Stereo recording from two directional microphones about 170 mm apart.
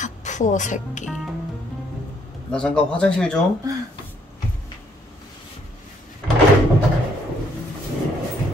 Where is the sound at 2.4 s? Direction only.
5° left (ahead or behind).